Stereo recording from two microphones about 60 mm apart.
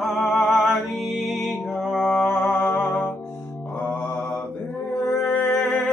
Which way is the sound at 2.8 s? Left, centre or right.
Left.